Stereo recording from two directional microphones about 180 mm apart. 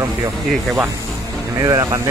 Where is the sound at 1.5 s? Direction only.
20° right (ahead or behind).